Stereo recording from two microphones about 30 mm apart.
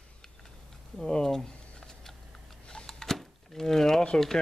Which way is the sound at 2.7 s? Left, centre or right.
Left.